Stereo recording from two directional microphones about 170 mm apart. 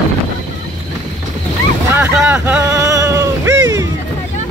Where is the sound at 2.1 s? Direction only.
10° right (ahead or behind).